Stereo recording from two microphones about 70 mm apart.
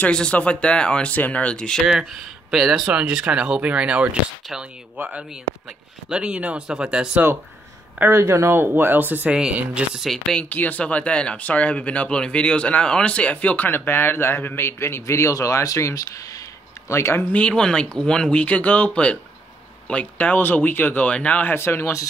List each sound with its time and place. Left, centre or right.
0.0 s speech: centre
2.5 s speech: centre
2.9 s speech: centre
6.0 s speech: centre
8.1 s speech: right
9.3 s speech: centre
10.5 s speech: left
16.9 s speech: left
17.2 s speech: centre; by 21.9 s left